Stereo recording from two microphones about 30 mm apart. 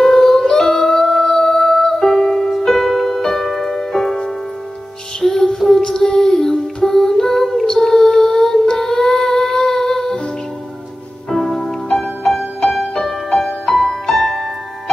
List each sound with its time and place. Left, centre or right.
0.0 s music: centre
0.4 s music: left
8.7 s humming: centre
11.4 s music: centre